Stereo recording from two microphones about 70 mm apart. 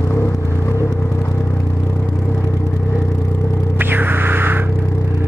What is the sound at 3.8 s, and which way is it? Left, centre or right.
Music, right.